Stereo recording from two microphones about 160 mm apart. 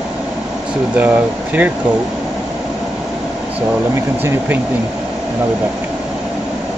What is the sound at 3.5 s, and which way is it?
Speech, 10° right (ahead or behind).